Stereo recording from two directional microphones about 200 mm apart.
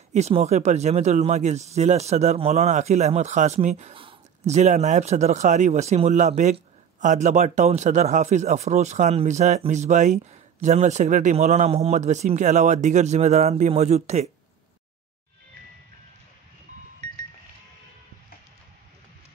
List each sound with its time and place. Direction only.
0.1 s speech: 35° right (ahead or behind)